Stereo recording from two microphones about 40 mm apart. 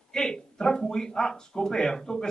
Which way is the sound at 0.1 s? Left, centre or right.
Centre.